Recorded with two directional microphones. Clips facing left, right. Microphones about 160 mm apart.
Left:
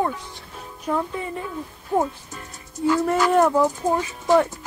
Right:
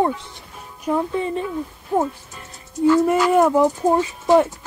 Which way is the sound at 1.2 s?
25° right (ahead or behind).